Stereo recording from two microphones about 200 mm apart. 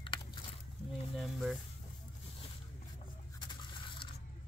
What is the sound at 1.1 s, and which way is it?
Speech, centre (ahead or behind).